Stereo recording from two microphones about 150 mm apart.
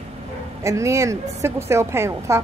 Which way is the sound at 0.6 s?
20° right (ahead or behind).